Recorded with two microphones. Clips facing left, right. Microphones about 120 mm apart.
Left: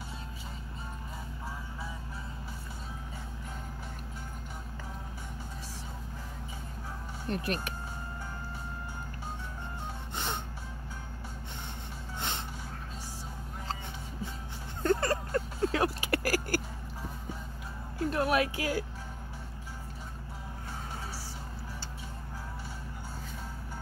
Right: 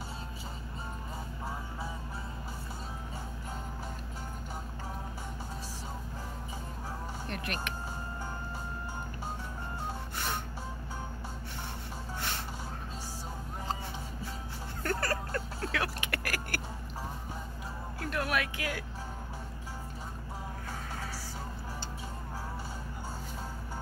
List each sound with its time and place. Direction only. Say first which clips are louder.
7.2 s speech: left 6 dB; 35° left (ahead or behind)
10.1 s gasp: left 2 dB; 20° left (ahead or behind)
14.8 s vehicle: left 5 dB; 20° left (ahead or behind); by 16.6 s 35° left (ahead or behind)
18.1 s music: left 4 dB; 35° left (ahead or behind)